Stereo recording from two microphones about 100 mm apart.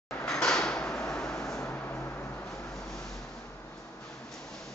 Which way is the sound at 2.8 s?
5° left (ahead or behind).